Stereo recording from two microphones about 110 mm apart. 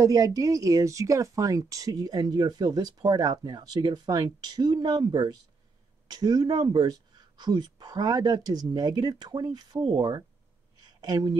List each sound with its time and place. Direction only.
0.0 s speech: 35° right (ahead or behind)
9.8 s speech: 55° right (ahead or behind)
10.9 s a woman's voice: 35° right (ahead or behind)